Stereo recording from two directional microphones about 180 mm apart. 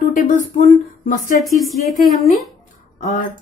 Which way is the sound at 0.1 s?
50° left (ahead or behind).